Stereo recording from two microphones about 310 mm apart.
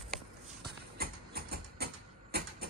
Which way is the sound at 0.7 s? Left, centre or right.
Right.